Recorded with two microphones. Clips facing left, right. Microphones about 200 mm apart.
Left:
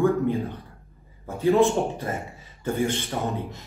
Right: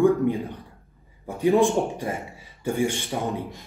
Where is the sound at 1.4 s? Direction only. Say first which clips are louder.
Even; 15° right (ahead or behind).